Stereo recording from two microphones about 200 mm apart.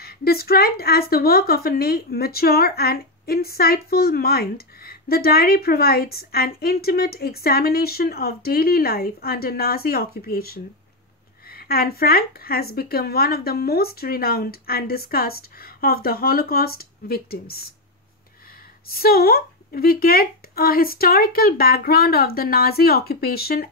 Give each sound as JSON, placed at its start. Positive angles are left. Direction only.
{"t": 0.0, "sound": "a woman's voice", "side_deg": 50}
{"t": 18.9, "sound": "a woman's voice", "side_deg": 50}